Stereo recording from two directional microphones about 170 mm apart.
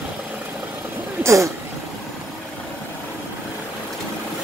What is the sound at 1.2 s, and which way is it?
Speech, 20° right (ahead or behind).